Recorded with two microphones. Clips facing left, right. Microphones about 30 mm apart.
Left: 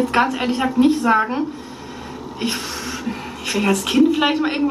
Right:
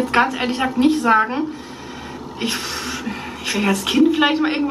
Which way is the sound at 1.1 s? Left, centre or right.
Centre.